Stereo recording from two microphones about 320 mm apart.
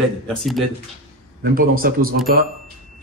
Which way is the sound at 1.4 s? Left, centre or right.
Right.